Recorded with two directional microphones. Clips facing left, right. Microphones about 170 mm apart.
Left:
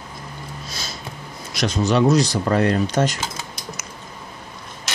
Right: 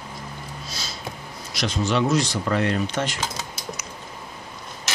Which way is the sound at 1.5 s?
45° left (ahead or behind).